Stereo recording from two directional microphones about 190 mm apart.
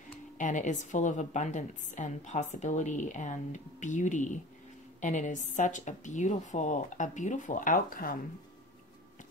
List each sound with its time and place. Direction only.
0.4 s a woman's voice: 40° left (ahead or behind)